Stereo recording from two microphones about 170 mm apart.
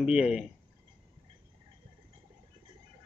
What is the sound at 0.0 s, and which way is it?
Speech, 5° right (ahead or behind).